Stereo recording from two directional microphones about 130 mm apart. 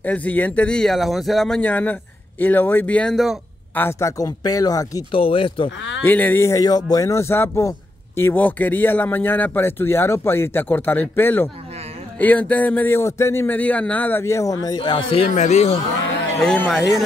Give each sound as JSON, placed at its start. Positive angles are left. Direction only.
{"t": 0.0, "sound": "speech", "side_deg": 10}
{"t": 3.7, "sound": "speech", "side_deg": 15}
{"t": 4.2, "sound": "speech", "side_deg": 30}
{"t": 5.1, "sound": "speech", "side_deg": 40}
{"t": 6.0, "sound": "speech", "side_deg": 15}
{"t": 15.3, "sound": "speech", "side_deg": 60}
{"t": 16.3, "sound": "speech", "side_deg": 5}